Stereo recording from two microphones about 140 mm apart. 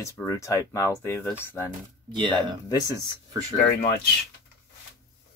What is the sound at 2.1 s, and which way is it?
Speech, 35° right (ahead or behind).